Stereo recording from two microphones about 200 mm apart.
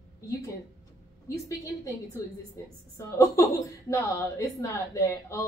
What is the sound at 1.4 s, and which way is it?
A woman's voice, 15° left (ahead or behind).